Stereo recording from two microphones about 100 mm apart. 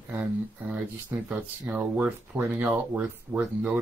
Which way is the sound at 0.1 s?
15° right (ahead or behind).